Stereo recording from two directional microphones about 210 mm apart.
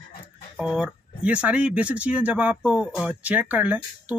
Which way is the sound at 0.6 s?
5° right (ahead or behind).